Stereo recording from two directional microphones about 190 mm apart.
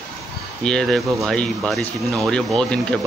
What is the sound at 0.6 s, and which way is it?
Speech, 5° left (ahead or behind).